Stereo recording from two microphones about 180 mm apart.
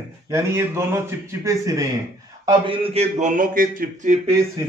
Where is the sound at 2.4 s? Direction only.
30° right (ahead or behind).